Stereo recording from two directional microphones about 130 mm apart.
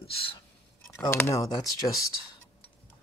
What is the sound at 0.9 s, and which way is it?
Speech, 20° left (ahead or behind).